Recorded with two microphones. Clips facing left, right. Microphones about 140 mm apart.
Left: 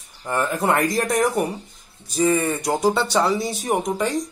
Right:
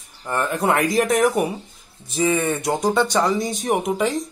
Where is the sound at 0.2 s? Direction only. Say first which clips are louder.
Even; 10° left (ahead or behind).